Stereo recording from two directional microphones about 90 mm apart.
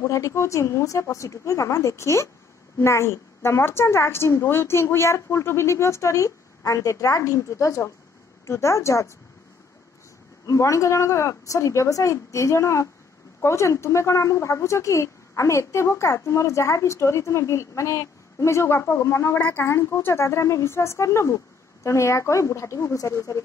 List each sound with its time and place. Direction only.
0.0 s a woman's voice: 35° left (ahead or behind)
10.4 s a woman's voice: 35° left (ahead or behind)